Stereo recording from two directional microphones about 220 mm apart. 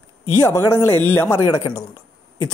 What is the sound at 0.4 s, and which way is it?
Speech, 10° left (ahead or behind).